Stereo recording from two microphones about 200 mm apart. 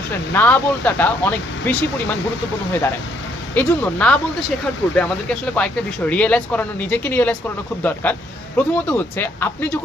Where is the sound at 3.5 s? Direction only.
5° left (ahead or behind).